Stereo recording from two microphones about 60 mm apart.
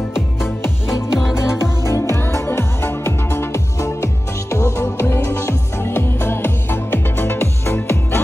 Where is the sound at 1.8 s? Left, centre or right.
Left.